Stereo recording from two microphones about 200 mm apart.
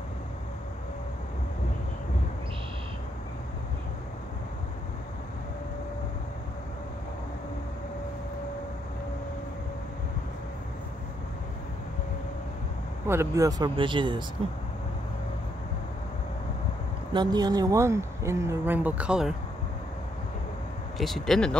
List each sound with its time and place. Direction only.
13.0 s speech: 15° right (ahead or behind)
17.1 s speech: 20° right (ahead or behind); by 19.3 s 5° right (ahead or behind)
21.0 s speech: centre (ahead or behind)